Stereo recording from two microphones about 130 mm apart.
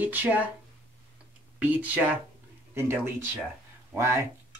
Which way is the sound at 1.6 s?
10° right (ahead or behind).